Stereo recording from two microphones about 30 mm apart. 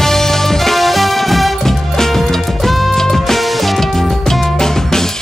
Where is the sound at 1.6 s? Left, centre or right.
Centre.